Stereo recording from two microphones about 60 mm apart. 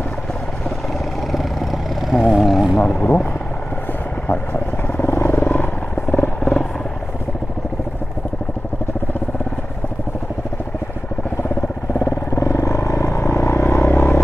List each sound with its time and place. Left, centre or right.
1.3 s vehicle: centre
2.9 s speech: left
5.0 s vehicle: left
11.4 s vehicle: left